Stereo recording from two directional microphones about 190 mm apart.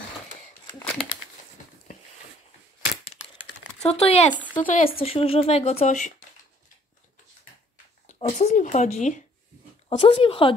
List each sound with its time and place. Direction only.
3.8 s speech: 35° left (ahead or behind)
4.6 s speech: 50° left (ahead or behind)
5.0 s speech: 30° left (ahead or behind)
8.1 s a woman's voice: 35° left (ahead or behind)